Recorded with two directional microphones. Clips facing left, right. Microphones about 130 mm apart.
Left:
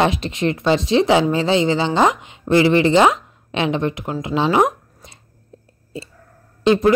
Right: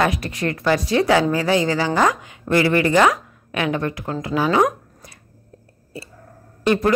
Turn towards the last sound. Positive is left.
turn(degrees=20)  # may be behind; listen again after turning